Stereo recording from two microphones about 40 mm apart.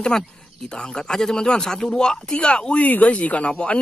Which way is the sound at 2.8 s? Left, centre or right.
Left.